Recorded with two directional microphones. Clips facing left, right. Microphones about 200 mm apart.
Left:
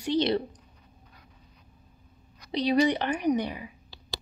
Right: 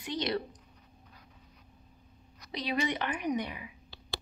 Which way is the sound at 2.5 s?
35° left (ahead or behind).